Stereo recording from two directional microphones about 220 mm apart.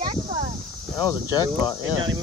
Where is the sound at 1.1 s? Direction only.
15° left (ahead or behind).